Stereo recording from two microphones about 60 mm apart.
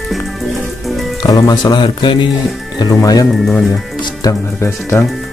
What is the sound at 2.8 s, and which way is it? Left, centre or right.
Speech, left.